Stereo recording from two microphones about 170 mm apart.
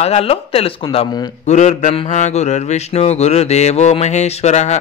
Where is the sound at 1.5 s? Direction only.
45° left (ahead or behind).